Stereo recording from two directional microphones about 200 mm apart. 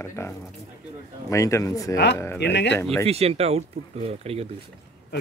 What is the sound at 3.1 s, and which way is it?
Speech, 30° right (ahead or behind).